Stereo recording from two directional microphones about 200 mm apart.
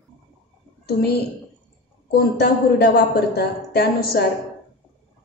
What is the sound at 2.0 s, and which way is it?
A woman's voice, 50° left (ahead or behind).